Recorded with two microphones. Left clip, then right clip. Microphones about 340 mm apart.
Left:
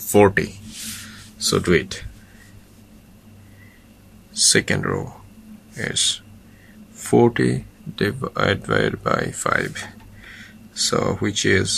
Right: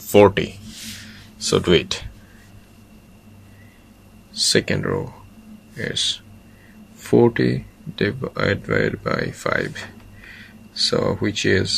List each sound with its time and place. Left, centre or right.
0.1 s speech: centre
4.3 s speech: centre